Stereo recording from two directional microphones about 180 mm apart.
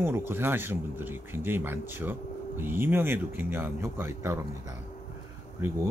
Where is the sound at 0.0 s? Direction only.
10° right (ahead or behind).